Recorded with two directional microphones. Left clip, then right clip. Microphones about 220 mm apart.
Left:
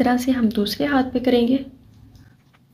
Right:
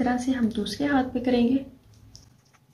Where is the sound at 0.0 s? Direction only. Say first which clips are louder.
Left 6 dB; 45° left (ahead or behind).